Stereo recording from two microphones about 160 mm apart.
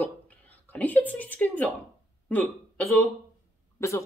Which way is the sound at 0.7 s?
10° left (ahead or behind).